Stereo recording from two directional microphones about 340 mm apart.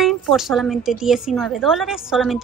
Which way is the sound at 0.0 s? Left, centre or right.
Centre.